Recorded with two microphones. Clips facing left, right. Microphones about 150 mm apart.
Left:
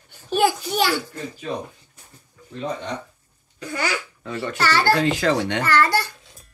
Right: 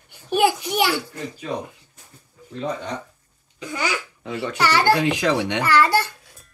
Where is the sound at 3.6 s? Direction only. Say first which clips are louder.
Even; 15° right (ahead or behind).